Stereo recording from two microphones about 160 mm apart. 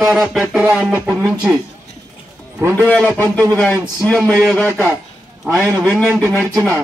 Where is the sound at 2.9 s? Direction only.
10° left (ahead or behind).